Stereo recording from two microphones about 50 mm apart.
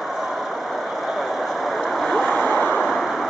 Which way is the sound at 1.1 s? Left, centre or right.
Centre.